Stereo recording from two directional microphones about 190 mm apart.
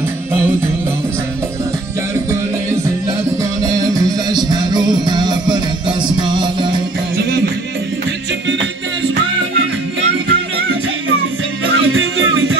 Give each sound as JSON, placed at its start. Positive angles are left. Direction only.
{"t": 3.6, "sound": "music", "side_deg": -20}
{"t": 7.2, "sound": "music", "side_deg": -55}
{"t": 10.2, "sound": "music", "side_deg": -90}